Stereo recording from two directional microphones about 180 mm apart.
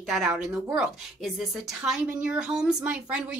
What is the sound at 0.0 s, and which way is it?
Speech, 5° right (ahead or behind).